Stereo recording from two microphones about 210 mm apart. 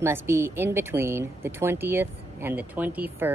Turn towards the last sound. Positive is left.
turn(degrees=-10)  # may be behind; listen again after turning